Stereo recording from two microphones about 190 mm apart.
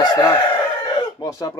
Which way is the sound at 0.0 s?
20° left (ahead or behind).